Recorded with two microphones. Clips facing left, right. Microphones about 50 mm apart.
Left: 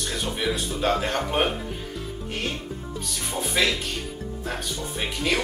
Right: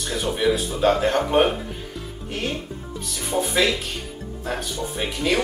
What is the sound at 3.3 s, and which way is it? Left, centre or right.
Speech, centre.